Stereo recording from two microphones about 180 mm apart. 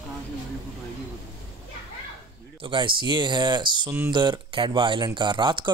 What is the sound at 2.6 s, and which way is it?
Speech, 25° right (ahead or behind).